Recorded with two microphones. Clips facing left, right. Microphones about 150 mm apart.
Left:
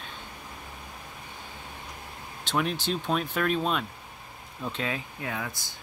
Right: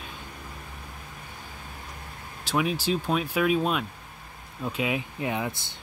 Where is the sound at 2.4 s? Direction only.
5° right (ahead or behind).